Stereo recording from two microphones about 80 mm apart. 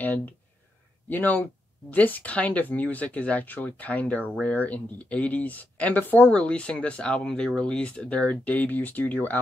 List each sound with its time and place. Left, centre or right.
0.0 s speech: left